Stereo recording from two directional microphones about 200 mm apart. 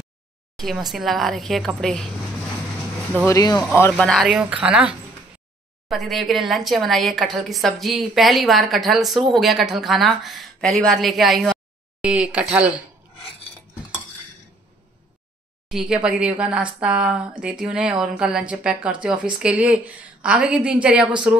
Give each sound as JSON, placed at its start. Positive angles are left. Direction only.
{"t": 0.6, "sound": "speech", "side_deg": 0}
{"t": 3.3, "sound": "speech", "side_deg": 15}
{"t": 15.7, "sound": "speech", "side_deg": -5}